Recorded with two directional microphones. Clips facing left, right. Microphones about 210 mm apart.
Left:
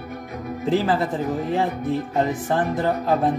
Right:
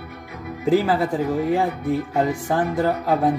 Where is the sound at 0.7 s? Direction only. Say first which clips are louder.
Right 2 dB; 10° right (ahead or behind).